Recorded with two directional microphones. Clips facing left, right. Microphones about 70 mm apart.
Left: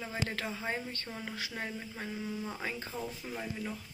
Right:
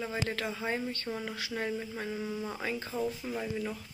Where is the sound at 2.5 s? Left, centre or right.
Centre.